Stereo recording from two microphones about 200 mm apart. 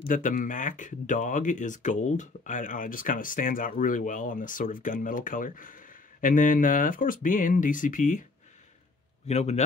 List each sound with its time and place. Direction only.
0.1 s speech: 40° left (ahead or behind)
9.3 s speech: 35° left (ahead or behind)